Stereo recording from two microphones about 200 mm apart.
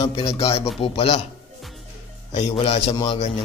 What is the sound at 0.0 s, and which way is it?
A man's voice, 30° left (ahead or behind).